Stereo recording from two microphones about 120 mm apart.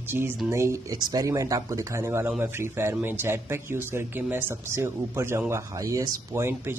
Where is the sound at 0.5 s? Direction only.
25° right (ahead or behind).